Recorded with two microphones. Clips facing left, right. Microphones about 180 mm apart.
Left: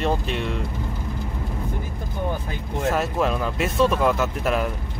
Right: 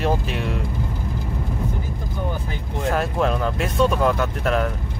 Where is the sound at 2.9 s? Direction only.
5° left (ahead or behind).